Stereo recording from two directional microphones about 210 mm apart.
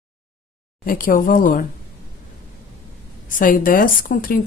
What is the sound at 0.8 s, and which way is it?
Speech, 40° left (ahead or behind).